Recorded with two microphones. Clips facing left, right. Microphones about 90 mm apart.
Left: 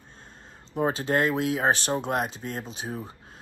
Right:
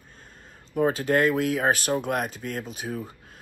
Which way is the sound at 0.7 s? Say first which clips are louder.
Right 2 dB; 30° left (ahead or behind).